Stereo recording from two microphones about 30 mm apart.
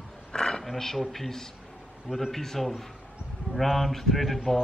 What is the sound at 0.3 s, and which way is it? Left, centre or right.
Roaring cats, left.